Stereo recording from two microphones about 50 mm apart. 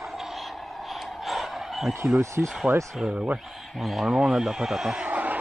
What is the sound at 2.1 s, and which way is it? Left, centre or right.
Speech, right.